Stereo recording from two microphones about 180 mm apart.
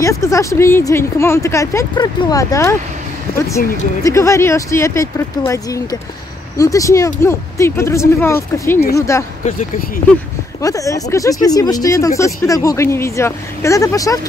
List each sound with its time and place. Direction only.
0.0 s speech: 15° left (ahead or behind)
9.4 s speech: 50° left (ahead or behind)
10.6 s speech: 20° left (ahead or behind)